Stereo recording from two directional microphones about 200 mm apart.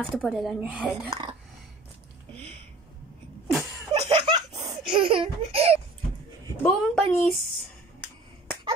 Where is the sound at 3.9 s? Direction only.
30° right (ahead or behind).